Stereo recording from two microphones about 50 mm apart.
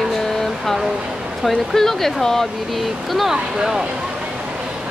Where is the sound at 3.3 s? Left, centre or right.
Centre.